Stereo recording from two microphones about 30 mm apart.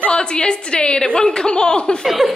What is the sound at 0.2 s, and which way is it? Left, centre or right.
A woman's voice, left.